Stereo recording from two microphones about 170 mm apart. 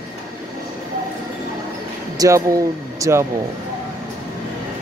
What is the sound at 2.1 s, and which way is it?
Speech, 20° right (ahead or behind).